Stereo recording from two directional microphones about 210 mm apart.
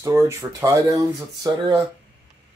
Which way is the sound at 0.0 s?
15° right (ahead or behind).